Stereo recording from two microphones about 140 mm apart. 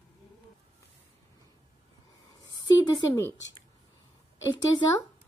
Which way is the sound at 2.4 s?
25° left (ahead or behind).